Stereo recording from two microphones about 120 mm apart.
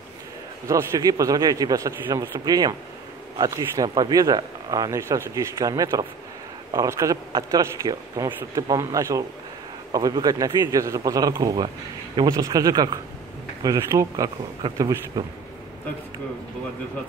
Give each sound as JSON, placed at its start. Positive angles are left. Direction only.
{"t": 0.7, "sound": "a man's voice", "side_deg": -30}